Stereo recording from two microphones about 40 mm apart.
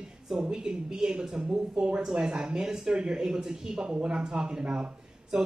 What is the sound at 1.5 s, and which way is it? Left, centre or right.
Speech, right.